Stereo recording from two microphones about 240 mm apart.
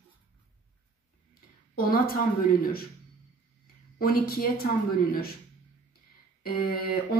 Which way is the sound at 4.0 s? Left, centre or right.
Left.